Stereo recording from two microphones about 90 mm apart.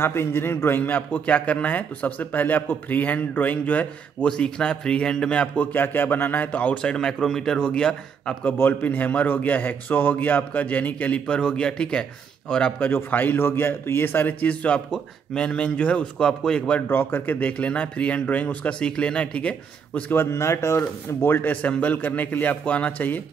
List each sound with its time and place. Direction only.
0.0 s a man's voice: 25° left (ahead or behind); by 8.4 s 10° left (ahead or behind)
8.5 s a man's voice: 20° left (ahead or behind)
20.2 s speech: 30° left (ahead or behind)